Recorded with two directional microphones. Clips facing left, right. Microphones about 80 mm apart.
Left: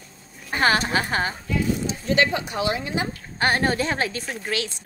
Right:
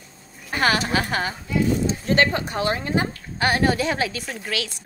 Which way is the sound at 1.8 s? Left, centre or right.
Right.